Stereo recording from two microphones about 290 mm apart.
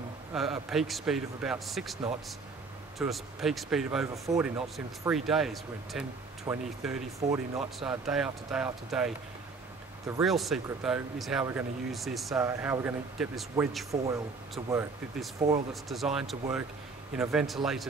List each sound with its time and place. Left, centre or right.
0.3 s speech: centre
3.0 s speech: centre
10.2 s speech: centre
15.3 s speech: right
15.7 s speech: centre